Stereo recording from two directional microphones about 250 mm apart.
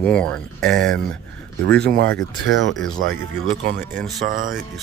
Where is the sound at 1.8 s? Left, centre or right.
Right.